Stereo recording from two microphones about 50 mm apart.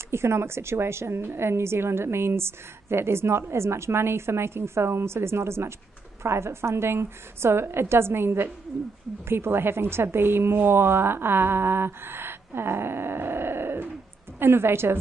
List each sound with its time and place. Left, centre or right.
0.1 s a woman's voice: right